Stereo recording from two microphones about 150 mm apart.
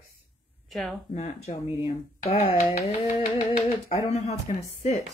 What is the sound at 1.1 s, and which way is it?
Speech, 50° left (ahead or behind).